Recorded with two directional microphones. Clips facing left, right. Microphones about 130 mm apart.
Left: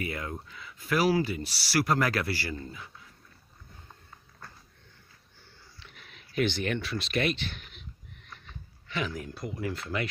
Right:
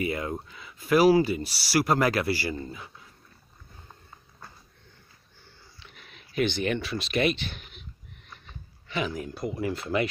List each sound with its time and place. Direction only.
0.0 s speech: 20° right (ahead or behind)
6.0 s speech: 5° right (ahead or behind)
8.3 s a sound: 15° right (ahead or behind)
9.4 s speech: 15° right (ahead or behind)